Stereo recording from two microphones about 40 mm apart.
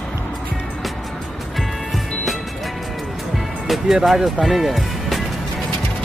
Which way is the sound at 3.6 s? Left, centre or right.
Centre.